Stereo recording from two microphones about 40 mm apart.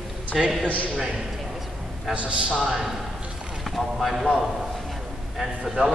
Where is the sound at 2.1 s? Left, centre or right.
Right.